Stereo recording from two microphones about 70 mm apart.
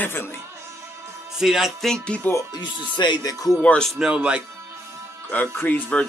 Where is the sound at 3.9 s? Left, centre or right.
Centre.